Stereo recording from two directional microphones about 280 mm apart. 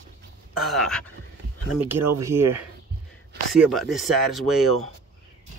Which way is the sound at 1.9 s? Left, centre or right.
Right.